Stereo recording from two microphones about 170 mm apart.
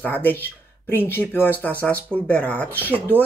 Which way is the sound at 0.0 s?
10° left (ahead or behind).